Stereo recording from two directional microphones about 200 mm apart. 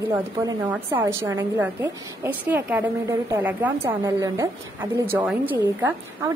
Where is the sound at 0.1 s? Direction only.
10° right (ahead or behind).